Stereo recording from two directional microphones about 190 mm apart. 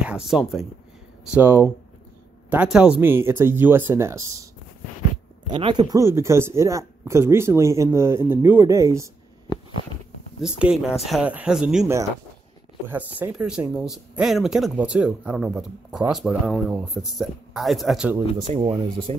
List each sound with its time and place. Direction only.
0.0 s speech: 5° right (ahead or behind)
5.5 s speech: 25° right (ahead or behind)
10.4 s speech: 5° right (ahead or behind)
18.5 s speech: 25° right (ahead or behind)